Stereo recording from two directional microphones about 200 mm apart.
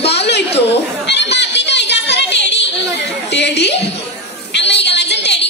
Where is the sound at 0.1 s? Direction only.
55° left (ahead or behind).